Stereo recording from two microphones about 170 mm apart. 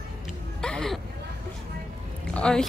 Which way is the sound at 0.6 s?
5° left (ahead or behind).